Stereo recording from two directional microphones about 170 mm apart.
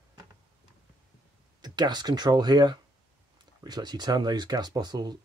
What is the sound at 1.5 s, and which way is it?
Speech, 25° right (ahead or behind).